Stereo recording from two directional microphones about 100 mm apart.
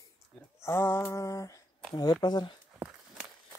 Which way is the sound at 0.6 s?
25° left (ahead or behind).